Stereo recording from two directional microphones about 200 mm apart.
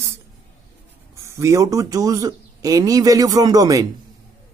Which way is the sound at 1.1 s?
15° right (ahead or behind).